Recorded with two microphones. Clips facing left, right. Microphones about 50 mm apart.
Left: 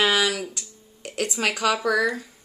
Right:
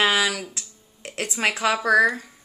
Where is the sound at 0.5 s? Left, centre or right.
Right.